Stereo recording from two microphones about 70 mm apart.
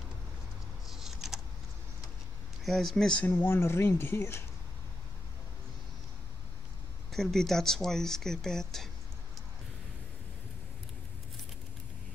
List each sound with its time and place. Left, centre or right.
0.8 s typing: centre
2.6 s speech: centre
3.3 s speech: left
7.1 s speech: centre